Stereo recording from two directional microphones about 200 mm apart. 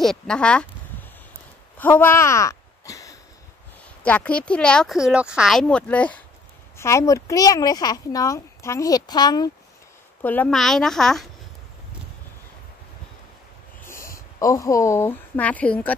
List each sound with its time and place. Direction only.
0.0 s speech: 5° left (ahead or behind)
1.8 s a sound: 10° left (ahead or behind)
4.0 s speech: 5° left (ahead or behind)
10.2 s speech: 10° left (ahead or behind)
13.8 s speech: 15° left (ahead or behind)